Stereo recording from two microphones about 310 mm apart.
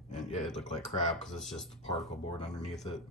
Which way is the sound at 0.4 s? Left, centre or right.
Centre.